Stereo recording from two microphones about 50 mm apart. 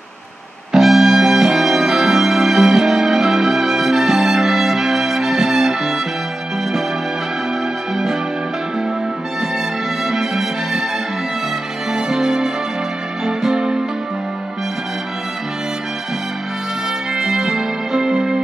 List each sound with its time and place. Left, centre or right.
0.7 s music: centre
7.9 s music: centre
10.0 s music: centre
11.9 s music: centre
17.1 s music: centre